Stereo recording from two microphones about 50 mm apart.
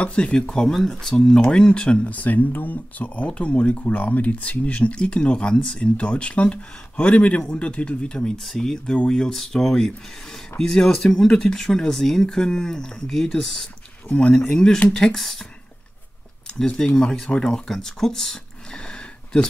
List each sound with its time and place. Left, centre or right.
0.0 s speech: centre
8.4 s speech: centre
9.3 s speech: centre
14.0 s speech: left
15.1 s speech: centre
16.4 s a sound: centre
17.5 s a sound: centre